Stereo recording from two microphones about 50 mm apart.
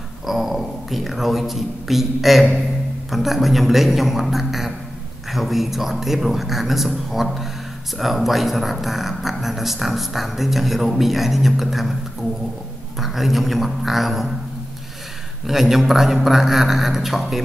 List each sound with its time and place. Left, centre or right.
0.3 s speech: centre
13.0 s speech: centre
15.4 s speech: centre